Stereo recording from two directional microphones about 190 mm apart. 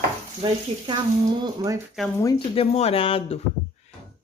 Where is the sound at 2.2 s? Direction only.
25° left (ahead or behind).